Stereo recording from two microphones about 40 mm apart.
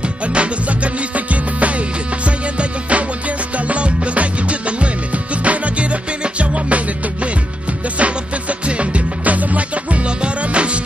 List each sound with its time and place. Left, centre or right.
0.3 s music: right
8.0 s music: right